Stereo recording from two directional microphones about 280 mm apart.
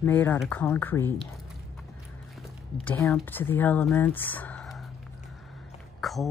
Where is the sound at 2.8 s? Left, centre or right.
Centre.